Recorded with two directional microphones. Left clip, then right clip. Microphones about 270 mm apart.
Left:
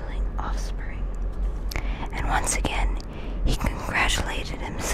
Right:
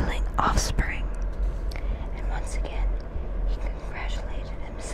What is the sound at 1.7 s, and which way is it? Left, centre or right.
Whispering, centre.